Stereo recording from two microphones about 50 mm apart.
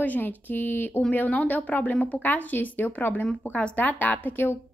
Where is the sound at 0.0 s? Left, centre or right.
Left.